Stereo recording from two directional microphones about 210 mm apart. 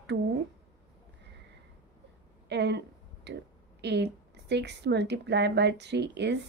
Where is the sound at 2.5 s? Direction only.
55° right (ahead or behind).